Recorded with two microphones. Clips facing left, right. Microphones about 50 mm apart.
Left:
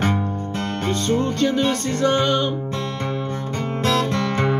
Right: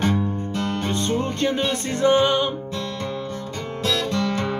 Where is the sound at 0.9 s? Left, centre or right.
Centre.